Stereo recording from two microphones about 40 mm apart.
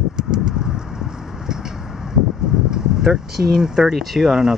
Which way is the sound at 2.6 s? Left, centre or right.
Centre.